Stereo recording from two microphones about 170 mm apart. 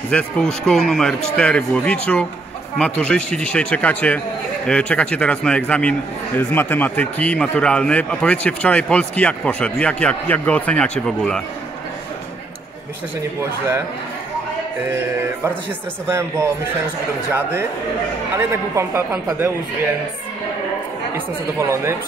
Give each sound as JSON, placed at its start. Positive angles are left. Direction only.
{"t": 0.1, "sound": "a man's voice", "side_deg": 5}
{"t": 16.1, "sound": "a man's voice", "side_deg": -15}
{"t": 18.3, "sound": "a man's voice", "side_deg": -15}
{"t": 21.5, "sound": "a man's voice", "side_deg": -15}